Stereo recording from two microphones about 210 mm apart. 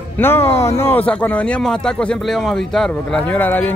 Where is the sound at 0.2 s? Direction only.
10° left (ahead or behind).